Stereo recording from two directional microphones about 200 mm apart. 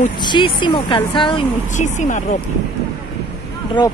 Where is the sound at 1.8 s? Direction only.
40° left (ahead or behind).